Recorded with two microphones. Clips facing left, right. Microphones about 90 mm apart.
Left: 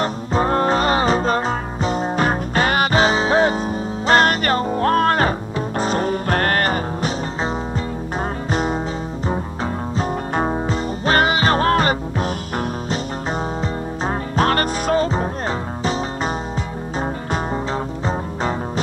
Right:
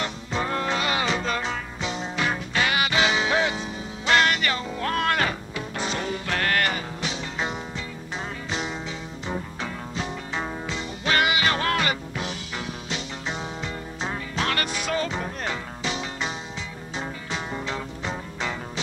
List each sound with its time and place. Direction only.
0.0 s music: 40° left (ahead or behind)